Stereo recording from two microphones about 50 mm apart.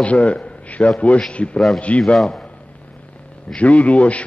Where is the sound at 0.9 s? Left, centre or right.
Left.